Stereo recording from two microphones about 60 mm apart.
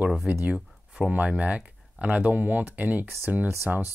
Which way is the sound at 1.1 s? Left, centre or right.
Right.